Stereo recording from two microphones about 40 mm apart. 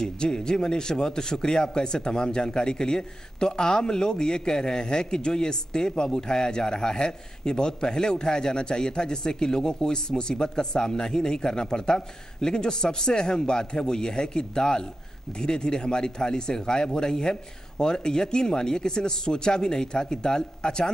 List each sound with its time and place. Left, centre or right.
0.0 s speech: centre